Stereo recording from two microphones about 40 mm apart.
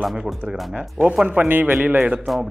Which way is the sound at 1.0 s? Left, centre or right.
Centre.